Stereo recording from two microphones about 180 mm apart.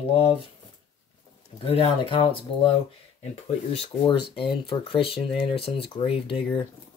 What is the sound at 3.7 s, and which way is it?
Speech, 25° left (ahead or behind).